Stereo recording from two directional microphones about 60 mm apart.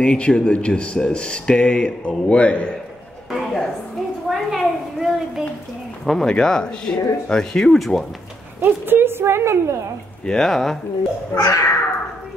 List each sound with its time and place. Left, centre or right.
0.0 s speech: centre
3.3 s a sound: centre
6.0 s speech: centre
8.6 s a woman's voice: right
10.2 s speech: centre
11.3 s babbling: left